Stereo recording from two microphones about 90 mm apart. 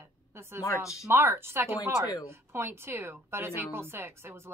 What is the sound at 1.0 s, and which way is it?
A woman's voice, 25° right (ahead or behind).